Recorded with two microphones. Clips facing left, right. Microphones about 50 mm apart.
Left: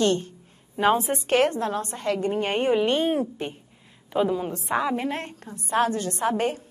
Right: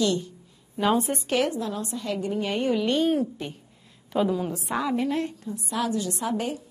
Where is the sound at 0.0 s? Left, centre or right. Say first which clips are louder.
Left 2 dB; left.